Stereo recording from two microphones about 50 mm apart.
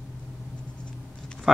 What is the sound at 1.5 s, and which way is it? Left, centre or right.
Speech, centre.